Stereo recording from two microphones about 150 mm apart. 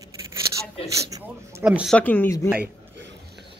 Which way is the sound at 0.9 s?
20° right (ahead or behind).